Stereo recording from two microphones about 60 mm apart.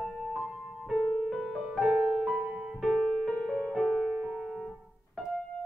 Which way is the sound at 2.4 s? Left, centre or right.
Centre.